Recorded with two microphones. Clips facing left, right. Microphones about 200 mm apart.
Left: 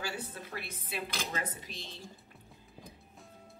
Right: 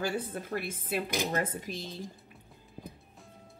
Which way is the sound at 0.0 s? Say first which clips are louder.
Right 7 dB; 50° right (ahead or behind).